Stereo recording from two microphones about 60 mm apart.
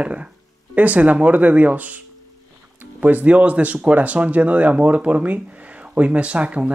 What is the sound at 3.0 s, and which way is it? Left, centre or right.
Speech, right.